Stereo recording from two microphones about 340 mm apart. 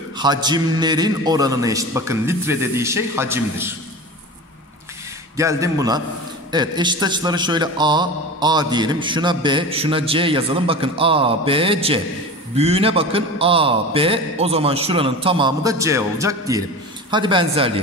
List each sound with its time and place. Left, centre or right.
0.2 s a man's voice: centre
5.4 s a man's voice: centre